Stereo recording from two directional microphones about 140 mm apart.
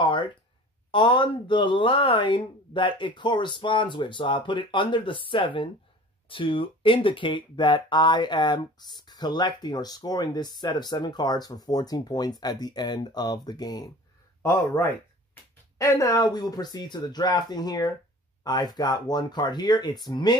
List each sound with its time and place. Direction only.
0.0 s a sound: 35° left (ahead or behind)
0.9 s speech: 35° left (ahead or behind)
15.8 s speech: 25° left (ahead or behind)